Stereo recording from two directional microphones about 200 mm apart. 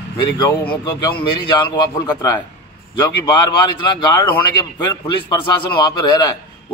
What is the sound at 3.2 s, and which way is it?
Speech, 20° left (ahead or behind).